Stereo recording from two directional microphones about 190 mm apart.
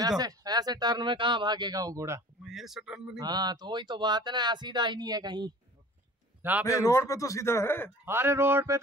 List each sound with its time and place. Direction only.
0.2 s speech: 20° right (ahead or behind)
2.4 s speech: centre (ahead or behind)
3.2 s speech: 20° right (ahead or behind)
6.6 s a man's voice: 15° left (ahead or behind)
8.0 s speech: 10° right (ahead or behind)